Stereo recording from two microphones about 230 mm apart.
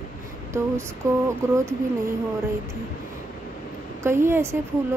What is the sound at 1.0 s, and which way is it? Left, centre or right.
Speech, centre.